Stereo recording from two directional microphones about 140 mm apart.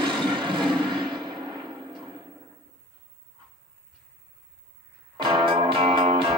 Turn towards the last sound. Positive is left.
turn(degrees=-40)  # may be behind; listen again after turning